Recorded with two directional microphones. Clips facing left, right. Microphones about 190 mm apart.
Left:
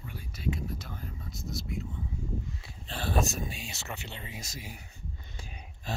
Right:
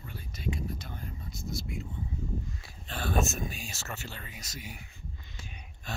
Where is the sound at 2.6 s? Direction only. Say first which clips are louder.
Even; 30° left (ahead or behind).